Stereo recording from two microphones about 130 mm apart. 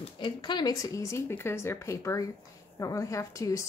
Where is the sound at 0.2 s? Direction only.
35° left (ahead or behind).